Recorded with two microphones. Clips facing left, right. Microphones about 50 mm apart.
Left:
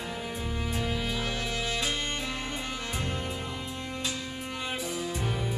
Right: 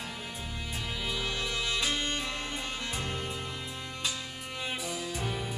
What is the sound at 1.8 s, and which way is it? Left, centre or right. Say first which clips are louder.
Music: even; centre.